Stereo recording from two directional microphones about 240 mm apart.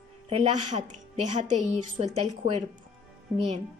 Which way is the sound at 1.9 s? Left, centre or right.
Right.